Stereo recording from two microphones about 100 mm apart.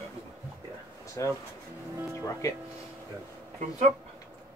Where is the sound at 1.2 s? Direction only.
35° left (ahead or behind).